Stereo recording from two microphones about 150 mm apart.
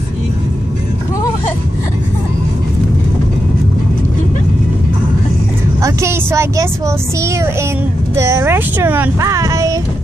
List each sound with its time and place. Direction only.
5.8 s vehicle: 20° right (ahead or behind)
7.2 s a sound: 20° right (ahead or behind)
8.2 s a child's voice: 20° right (ahead or behind)